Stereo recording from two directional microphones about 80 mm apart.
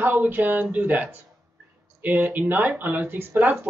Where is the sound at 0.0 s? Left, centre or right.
Right.